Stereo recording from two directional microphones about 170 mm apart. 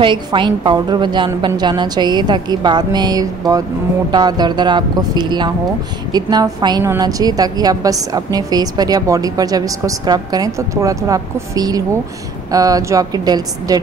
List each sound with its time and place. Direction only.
0.0 s a woman's voice: 30° right (ahead or behind)